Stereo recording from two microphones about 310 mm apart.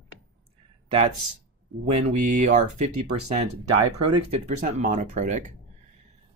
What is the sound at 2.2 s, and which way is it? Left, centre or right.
Speech, right.